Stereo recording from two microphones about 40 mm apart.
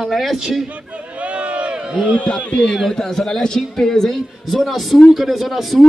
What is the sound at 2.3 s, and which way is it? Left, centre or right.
Speech, left.